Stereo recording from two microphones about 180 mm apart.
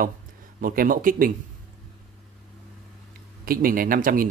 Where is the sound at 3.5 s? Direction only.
50° right (ahead or behind).